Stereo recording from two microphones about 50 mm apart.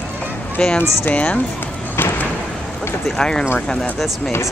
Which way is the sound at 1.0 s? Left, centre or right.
Left.